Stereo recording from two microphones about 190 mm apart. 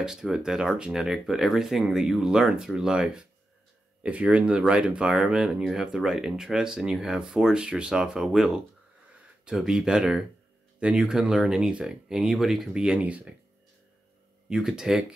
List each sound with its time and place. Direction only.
0.0 s speech: 5° right (ahead or behind)
14.5 s speech: 5° right (ahead or behind)